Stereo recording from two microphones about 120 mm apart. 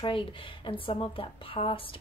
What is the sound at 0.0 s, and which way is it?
Speech, 45° left (ahead or behind).